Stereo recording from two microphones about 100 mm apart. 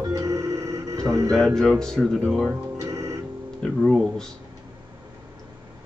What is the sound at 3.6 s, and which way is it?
Speech, 5° left (ahead or behind).